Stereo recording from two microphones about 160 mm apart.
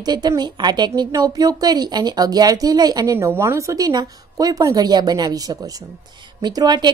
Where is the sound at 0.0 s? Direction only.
25° right (ahead or behind).